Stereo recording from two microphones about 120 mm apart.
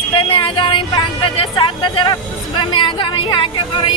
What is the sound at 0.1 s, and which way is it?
Speech, 45° left (ahead or behind).